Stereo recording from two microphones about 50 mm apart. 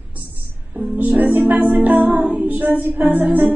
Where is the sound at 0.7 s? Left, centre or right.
Right.